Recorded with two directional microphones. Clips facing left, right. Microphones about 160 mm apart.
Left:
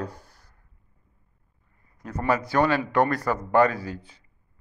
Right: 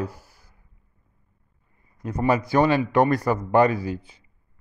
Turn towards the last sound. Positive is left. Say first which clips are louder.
# right 6 dB
turn(degrees=-15)  # may be behind; listen again after turning